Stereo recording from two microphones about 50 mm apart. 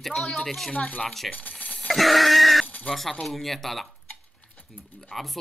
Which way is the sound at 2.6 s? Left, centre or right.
Left.